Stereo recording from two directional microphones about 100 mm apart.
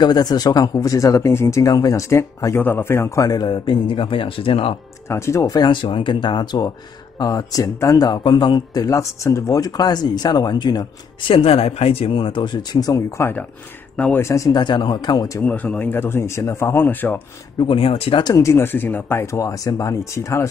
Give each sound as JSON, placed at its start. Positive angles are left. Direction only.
{"t": 0.0, "sound": "speech", "side_deg": 40}
{"t": 5.0, "sound": "speech", "side_deg": 25}
{"t": 5.6, "sound": "speech", "side_deg": 55}
{"t": 8.1, "sound": "speech", "side_deg": 50}
{"t": 11.2, "sound": "speech", "side_deg": 65}
{"t": 13.9, "sound": "speech", "side_deg": 15}
{"t": 14.2, "sound": "speech", "side_deg": 30}
{"t": 14.5, "sound": "speech", "side_deg": 50}
{"t": 15.4, "sound": "speech", "side_deg": 15}
{"t": 17.7, "sound": "speech", "side_deg": 70}
{"t": 18.2, "sound": "speech", "side_deg": 35}